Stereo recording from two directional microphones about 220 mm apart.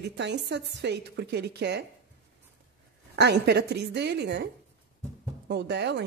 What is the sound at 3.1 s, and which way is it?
A woman's voice, 50° right (ahead or behind).